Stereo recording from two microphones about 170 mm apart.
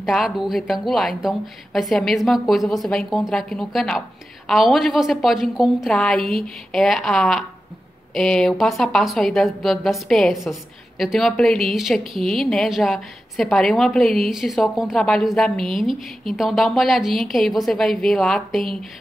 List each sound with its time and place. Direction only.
0.0 s a woman's voice: centre (ahead or behind)